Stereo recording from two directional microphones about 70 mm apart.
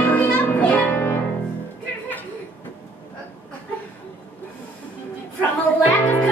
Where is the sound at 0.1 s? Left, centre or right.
Left.